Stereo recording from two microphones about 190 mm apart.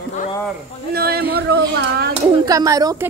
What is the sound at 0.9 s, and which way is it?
Speech, 55° right (ahead or behind).